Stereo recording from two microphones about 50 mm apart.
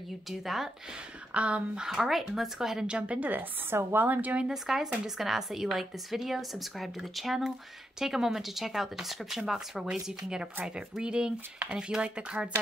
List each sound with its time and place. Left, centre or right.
0.3 s speech: centre
1.3 s speech: right
1.9 s speech: centre
2.9 s speech: right
3.3 s speech: right
4.4 s speech: centre